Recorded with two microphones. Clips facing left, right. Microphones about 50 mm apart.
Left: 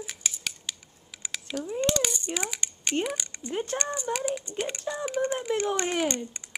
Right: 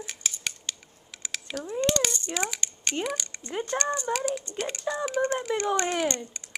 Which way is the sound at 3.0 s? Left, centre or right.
Centre.